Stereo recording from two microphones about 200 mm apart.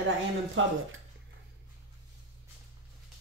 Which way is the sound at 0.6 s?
75° right (ahead or behind).